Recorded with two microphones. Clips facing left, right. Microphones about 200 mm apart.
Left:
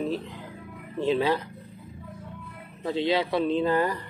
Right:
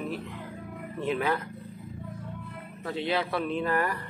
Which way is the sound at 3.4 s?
30° left (ahead or behind).